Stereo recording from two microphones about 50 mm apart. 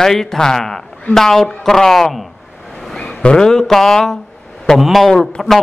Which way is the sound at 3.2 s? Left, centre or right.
Centre.